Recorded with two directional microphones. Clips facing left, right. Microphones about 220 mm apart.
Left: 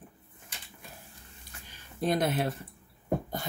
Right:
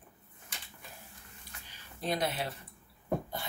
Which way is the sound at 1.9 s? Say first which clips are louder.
Left 6 dB; 50° left (ahead or behind).